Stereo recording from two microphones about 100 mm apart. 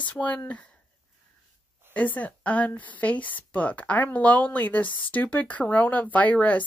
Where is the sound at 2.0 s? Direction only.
15° left (ahead or behind).